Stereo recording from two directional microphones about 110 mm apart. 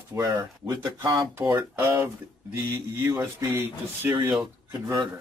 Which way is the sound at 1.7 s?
20° right (ahead or behind).